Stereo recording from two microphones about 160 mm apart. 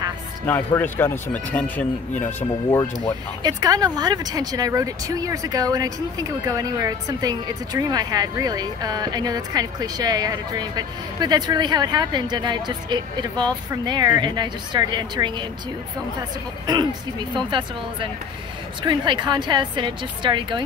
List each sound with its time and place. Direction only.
0.5 s speech: 10° left (ahead or behind)
3.4 s speech: 25° right (ahead or behind)